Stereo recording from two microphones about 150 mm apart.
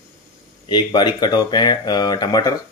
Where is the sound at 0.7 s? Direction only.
30° left (ahead or behind).